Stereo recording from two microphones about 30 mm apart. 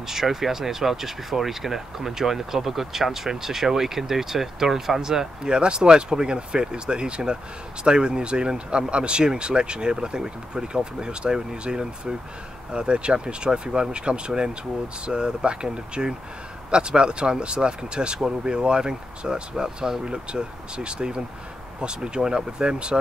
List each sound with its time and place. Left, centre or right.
0.0 s speech: centre
5.5 s speech: right
19.5 s speech: centre
20.2 s speech: right